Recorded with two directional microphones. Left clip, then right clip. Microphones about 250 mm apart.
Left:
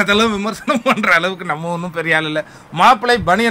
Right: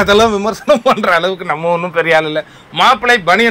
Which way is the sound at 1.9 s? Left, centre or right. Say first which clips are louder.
Right 2 dB; centre.